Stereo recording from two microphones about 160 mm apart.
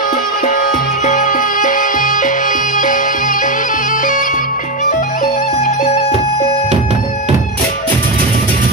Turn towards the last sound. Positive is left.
turn(degrees=-45)  # may be behind; listen again after turning